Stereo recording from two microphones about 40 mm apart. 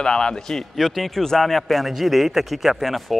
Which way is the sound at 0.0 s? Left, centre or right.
Left.